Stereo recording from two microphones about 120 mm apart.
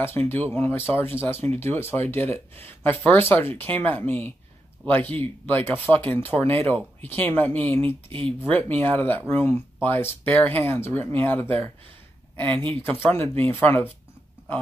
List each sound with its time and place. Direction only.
0.0 s speech: 20° left (ahead or behind)
8.1 s speech: 50° right (ahead or behind)
8.4 s speech: 15° left (ahead or behind)